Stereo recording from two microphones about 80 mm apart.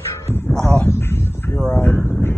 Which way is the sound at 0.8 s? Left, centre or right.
Left.